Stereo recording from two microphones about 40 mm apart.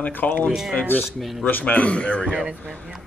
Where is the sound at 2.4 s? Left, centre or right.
Right.